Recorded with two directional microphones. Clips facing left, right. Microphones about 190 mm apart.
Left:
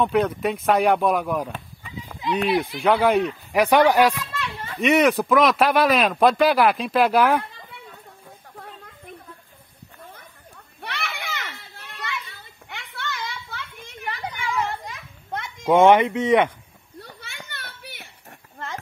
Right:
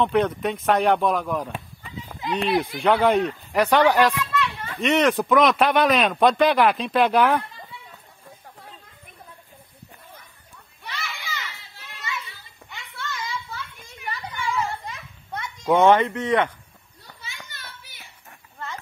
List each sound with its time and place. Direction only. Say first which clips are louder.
0.0 s speech: even; 5° left (ahead or behind)
1.5 s a sound: even; 5° right (ahead or behind)
2.3 s speech: left 1 dB; 5° left (ahead or behind)
4.3 s a sound: right 5 dB; 30° left (ahead or behind)
4.7 s speech: left 2 dB; 10° left (ahead or behind)
10.8 s children playing: left 3 dB; 65° left (ahead or behind)
15.6 s speech: left 2 dB; 15° left (ahead or behind)
17.0 s children playing: left 1 dB; 65° left (ahead or behind)
17.5 s a sound: left 5 dB; 65° left (ahead or behind)